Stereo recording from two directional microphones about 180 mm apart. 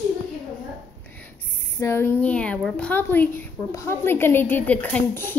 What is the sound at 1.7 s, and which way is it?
A woman's voice, 15° left (ahead or behind).